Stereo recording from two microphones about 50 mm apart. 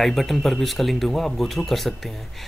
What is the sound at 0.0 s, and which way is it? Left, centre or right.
Speech, centre.